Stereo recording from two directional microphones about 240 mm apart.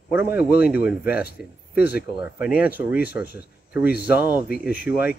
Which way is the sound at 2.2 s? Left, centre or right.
Centre.